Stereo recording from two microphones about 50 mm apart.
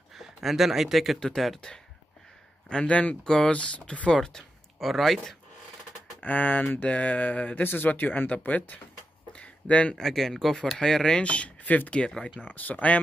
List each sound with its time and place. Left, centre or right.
0.1 s speech: centre
2.7 s speech: left
3.3 s speech: centre
4.2 s speech: centre
4.7 s speech: centre
6.2 s speech: left
7.6 s speech: left
9.3 s a sound: left
9.9 s speech: centre
11.2 s speech: left